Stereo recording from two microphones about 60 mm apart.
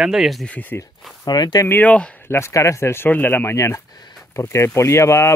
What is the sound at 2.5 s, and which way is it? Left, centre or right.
Speech, left.